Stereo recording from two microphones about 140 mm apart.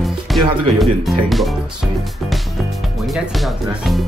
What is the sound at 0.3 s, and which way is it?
Speech, centre (ahead or behind).